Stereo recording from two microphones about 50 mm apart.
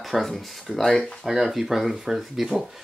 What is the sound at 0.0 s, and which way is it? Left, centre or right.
Speech, centre.